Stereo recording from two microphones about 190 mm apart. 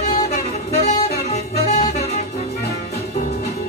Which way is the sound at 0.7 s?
35° left (ahead or behind).